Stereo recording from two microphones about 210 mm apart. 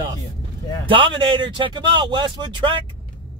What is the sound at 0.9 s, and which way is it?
Speech, 25° right (ahead or behind).